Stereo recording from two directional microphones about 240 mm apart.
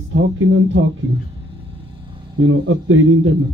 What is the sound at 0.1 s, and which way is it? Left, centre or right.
Speech, right.